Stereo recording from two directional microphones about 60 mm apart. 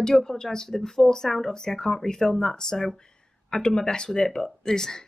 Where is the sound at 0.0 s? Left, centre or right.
Centre.